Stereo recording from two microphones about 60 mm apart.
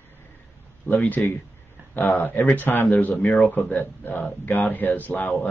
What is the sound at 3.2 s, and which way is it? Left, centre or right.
Speech, centre.